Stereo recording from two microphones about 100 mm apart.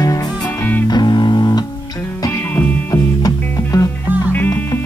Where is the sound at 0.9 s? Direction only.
45° left (ahead or behind).